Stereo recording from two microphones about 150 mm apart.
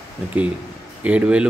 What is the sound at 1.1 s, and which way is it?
Speech, 10° right (ahead or behind).